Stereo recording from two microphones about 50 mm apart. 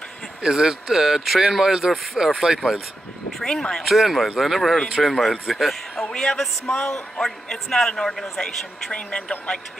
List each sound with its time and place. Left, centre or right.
0.4 s speech: centre
3.4 s a man's voice: centre
3.8 s a man's voice: centre